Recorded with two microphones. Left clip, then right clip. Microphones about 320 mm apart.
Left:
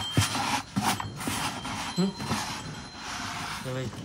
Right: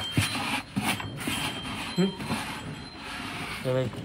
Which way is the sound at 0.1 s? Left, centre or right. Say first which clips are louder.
Left 2 dB; centre.